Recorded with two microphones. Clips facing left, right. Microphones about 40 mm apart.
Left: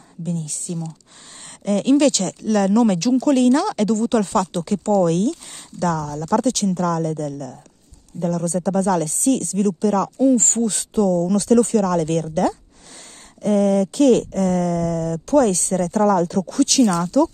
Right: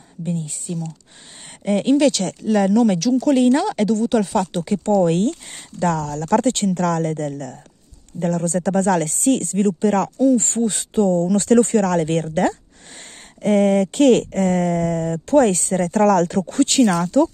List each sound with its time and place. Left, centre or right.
0.2 s speech: right
2.0 s speech: centre
2.7 s speech: centre
3.3 s speech: centre
3.8 s speech: centre
5.1 s speech: right
10.3 s speech: centre; by 16.3 s right
16.3 s speech: right
16.8 s speech: right